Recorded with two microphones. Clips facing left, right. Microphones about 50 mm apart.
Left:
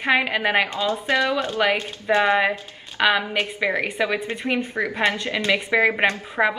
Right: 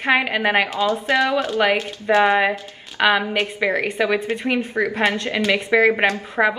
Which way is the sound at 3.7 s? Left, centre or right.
Centre.